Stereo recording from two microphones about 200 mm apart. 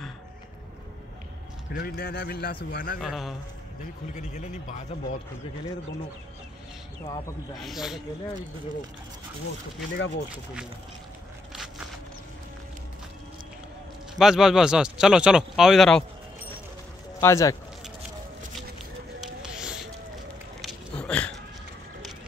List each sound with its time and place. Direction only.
1.8 s speech: 50° left (ahead or behind)
3.0 s speech: centre (ahead or behind)
4.1 s speech: 35° left (ahead or behind)
7.5 s speech: centre (ahead or behind)
9.9 s speech: 65° left (ahead or behind)
14.1 s speech: centre (ahead or behind)
17.2 s speech: 15° left (ahead or behind)
19.2 s a sound: 5° right (ahead or behind)